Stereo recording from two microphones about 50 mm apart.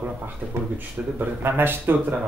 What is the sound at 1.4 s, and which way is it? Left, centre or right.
Speech, right.